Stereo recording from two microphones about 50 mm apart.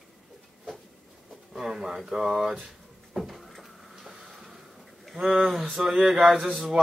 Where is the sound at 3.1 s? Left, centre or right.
Centre.